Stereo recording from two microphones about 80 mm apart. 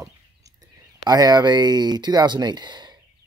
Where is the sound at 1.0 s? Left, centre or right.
Right.